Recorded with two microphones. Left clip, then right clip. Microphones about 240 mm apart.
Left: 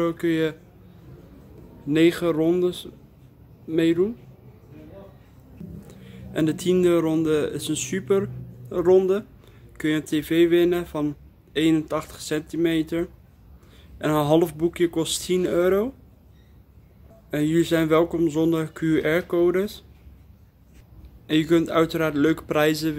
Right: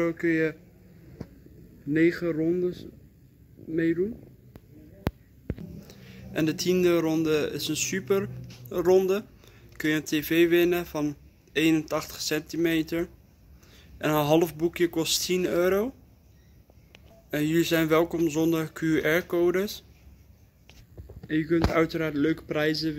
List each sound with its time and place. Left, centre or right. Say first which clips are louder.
0.0 s a man's voice: left 2 dB; centre
3.7 s speech: left 5 dB; left
5.9 s a man's voice: left 3 dB; centre
17.3 s a man's voice: left 3 dB; centre
21.3 s a man's voice: left 5 dB; centre